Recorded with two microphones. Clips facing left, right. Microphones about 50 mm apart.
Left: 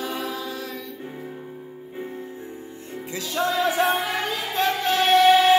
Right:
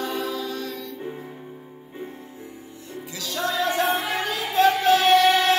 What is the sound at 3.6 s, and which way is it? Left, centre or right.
Music, centre.